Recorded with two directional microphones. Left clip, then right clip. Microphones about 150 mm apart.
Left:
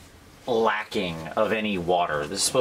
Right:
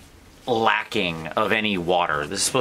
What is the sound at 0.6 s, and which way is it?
Speech, 30° right (ahead or behind).